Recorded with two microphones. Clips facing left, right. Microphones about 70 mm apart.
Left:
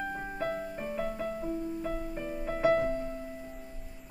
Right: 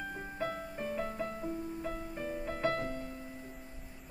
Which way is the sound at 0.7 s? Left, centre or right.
Centre.